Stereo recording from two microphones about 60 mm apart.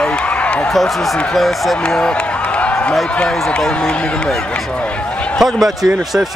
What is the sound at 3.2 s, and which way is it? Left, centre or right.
Speech, centre.